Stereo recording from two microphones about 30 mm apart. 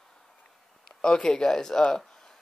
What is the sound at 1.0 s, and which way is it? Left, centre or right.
Speech, left.